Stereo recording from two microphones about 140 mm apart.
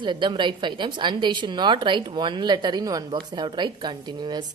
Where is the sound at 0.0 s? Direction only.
35° right (ahead or behind).